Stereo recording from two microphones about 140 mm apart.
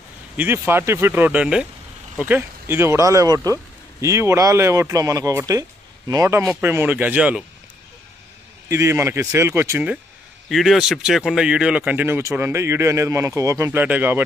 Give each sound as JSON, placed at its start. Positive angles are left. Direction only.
{"t": 0.4, "sound": "speech", "side_deg": -15}
{"t": 8.6, "sound": "speech", "side_deg": -20}
{"t": 10.5, "sound": "speech", "side_deg": 0}